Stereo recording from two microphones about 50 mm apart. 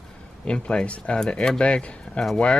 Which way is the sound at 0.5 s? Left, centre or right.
Centre.